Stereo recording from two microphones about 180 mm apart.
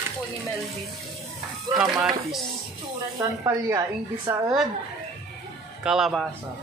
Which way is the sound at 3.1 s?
20° right (ahead or behind).